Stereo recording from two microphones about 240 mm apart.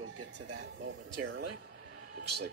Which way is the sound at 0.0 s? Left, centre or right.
Right.